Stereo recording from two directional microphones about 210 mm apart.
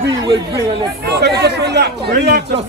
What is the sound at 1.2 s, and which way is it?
Speech, 55° right (ahead or behind).